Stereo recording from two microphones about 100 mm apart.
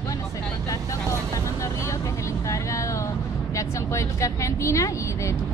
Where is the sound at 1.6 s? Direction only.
30° left (ahead or behind).